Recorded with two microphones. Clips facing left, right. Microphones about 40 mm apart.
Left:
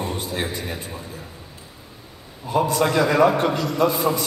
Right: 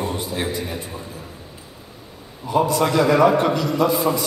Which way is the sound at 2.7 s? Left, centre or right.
Centre.